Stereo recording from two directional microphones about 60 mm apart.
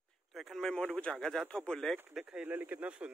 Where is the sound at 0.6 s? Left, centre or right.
Centre.